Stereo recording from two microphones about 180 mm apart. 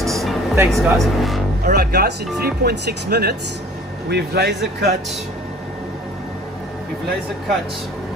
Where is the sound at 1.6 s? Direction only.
65° right (ahead or behind).